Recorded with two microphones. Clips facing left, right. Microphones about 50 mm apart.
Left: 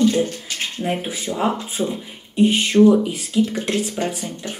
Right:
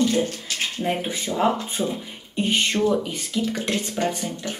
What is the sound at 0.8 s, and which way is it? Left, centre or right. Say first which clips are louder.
Speech: left 2 dB; centre.